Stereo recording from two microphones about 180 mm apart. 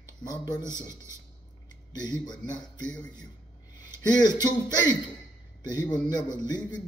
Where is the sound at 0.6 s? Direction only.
15° right (ahead or behind).